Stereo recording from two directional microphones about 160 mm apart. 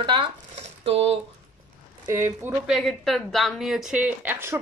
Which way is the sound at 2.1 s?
15° right (ahead or behind).